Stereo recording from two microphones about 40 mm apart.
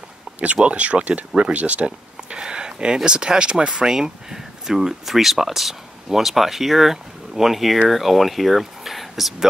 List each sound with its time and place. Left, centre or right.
0.7 s speech: right; by 9.5 s centre